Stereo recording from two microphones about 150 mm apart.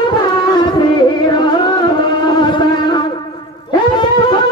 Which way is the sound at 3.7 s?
30° left (ahead or behind).